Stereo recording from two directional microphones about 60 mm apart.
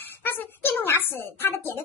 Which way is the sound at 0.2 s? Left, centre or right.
Left.